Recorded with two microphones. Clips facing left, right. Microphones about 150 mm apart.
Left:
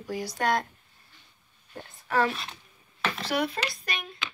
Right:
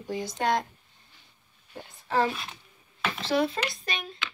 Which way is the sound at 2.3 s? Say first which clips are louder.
Even; centre (ahead or behind).